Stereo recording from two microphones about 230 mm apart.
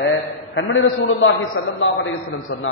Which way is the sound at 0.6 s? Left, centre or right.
Left.